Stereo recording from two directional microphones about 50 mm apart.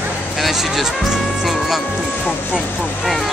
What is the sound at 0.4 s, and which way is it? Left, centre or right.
Music, centre.